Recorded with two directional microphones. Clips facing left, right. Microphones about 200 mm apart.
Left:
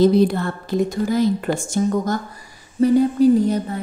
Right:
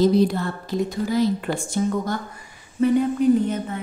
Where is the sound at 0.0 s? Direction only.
55° left (ahead or behind).